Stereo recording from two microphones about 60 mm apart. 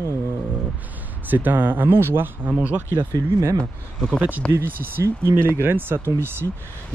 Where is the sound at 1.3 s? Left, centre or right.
Right.